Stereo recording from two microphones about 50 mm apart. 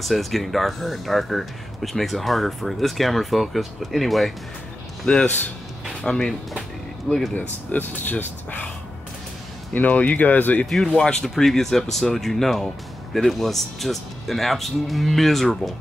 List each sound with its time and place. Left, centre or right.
0.0 s speech: centre
6.0 s speech: centre
7.3 s speech: left
9.8 s speech: left
11.0 s speech: centre